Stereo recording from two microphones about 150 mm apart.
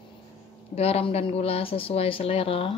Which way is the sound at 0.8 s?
40° left (ahead or behind).